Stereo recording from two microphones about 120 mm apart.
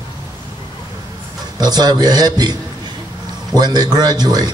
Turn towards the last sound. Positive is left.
turn(degrees=-35)  # may be behind; listen again after turning